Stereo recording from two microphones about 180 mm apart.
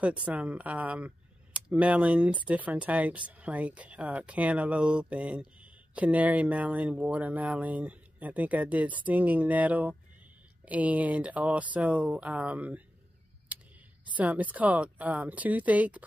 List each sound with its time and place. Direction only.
0.0 s speech: 5° right (ahead or behind)
14.0 s speech: 10° right (ahead or behind)